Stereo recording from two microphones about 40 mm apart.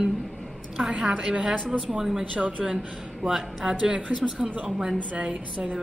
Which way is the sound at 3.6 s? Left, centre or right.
Right.